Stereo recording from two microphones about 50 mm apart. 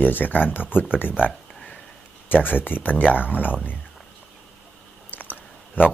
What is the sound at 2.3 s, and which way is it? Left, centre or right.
Speech, left.